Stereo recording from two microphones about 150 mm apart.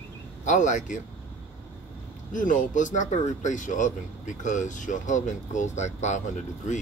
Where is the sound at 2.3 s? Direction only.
60° left (ahead or behind).